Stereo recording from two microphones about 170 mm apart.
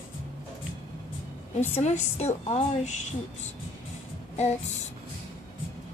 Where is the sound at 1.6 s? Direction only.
40° left (ahead or behind).